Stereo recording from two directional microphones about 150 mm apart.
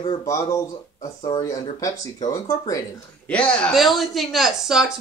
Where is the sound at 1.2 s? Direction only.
25° left (ahead or behind).